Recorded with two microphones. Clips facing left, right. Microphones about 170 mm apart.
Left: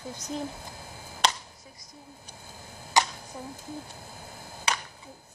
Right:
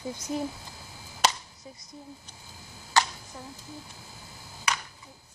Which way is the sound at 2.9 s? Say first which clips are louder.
Left 1 dB; 15° left (ahead or behind).